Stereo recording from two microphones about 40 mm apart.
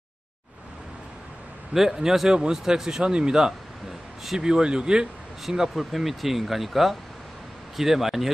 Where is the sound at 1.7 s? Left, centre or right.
Centre.